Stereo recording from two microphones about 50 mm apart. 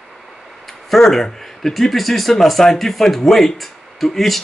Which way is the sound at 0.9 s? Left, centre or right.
Centre.